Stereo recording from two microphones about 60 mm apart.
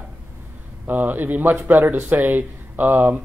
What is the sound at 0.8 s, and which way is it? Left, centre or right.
Speech, right.